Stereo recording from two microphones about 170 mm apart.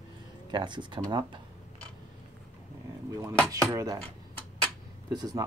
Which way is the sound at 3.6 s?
20° right (ahead or behind).